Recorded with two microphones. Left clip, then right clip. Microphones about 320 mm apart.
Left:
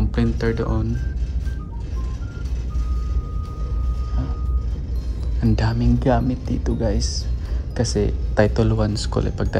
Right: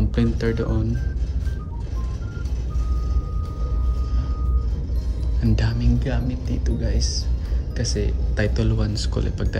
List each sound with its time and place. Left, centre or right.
0.0 s speech: centre
5.4 s speech: centre